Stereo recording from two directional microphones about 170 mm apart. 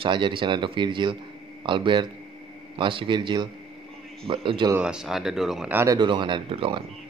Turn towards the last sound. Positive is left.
turn(degrees=-30)  # may be behind; listen again after turning